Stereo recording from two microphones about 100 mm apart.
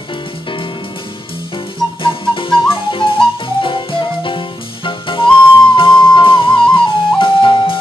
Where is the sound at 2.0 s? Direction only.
60° left (ahead or behind).